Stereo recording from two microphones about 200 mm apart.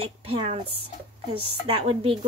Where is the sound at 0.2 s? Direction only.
30° right (ahead or behind).